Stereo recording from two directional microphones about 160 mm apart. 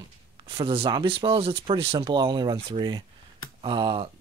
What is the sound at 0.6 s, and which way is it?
Speech, 35° right (ahead or behind).